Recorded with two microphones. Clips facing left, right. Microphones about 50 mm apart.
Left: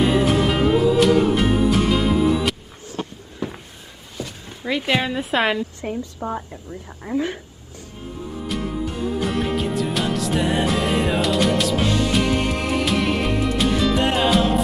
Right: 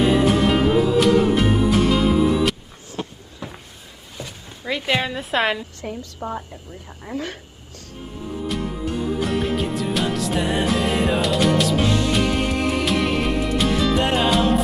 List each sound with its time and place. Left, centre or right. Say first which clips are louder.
0.0 s music: right 1 dB; centre
3.4 s a sound: left 6 dB; centre
4.5 s speech: left 1 dB; centre
6.2 s speech: left 1 dB; centre
7.1 s a woman's voice: left 5 dB; left
8.5 s music: left 1 dB; centre